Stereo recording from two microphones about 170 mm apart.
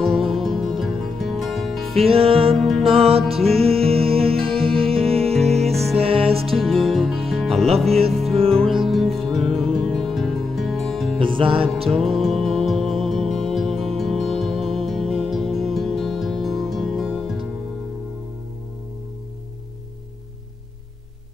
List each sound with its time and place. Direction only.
0.0 s music: centre (ahead or behind)
2.0 s music: 35° right (ahead or behind)
2.5 s music: centre (ahead or behind)
2.8 s music: 35° right (ahead or behind)
5.2 s music: centre (ahead or behind)
5.9 s music: 35° right (ahead or behind)
6.5 s music: centre (ahead or behind)
11.1 s music: 30° right (ahead or behind)
11.9 s music: centre (ahead or behind)